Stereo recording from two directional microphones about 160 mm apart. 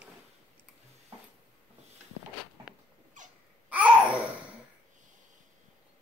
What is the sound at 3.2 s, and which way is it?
Babbling, 50° right (ahead or behind).